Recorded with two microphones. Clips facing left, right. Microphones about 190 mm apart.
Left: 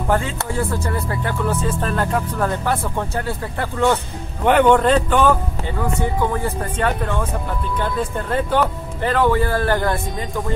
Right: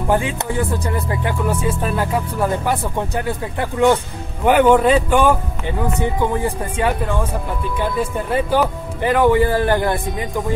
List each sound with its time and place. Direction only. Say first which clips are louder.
0.1 s music: right 2 dB; 15° right (ahead or behind)